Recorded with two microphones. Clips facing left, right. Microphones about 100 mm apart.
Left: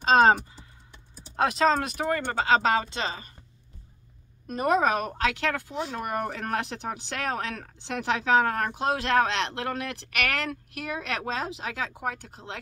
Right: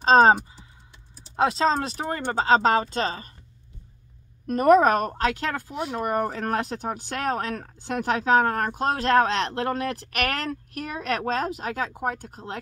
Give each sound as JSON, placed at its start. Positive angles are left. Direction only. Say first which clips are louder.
{"t": 0.0, "sound": "speech", "louder": "right 3 dB", "side_deg": -35}
{"t": 1.3, "sound": "speech", "louder": "right 1 dB", "side_deg": -25}
{"t": 4.5, "sound": "speech", "louder": "right 7 dB", "side_deg": -45}
{"t": 5.7, "sound": "speech", "louder": "right 2 dB", "side_deg": -20}
{"t": 5.9, "sound": "speech", "louder": "right 8 dB", "side_deg": -35}